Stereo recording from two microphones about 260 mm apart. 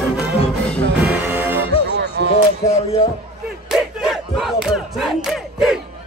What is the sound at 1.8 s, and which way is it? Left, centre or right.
Music, right.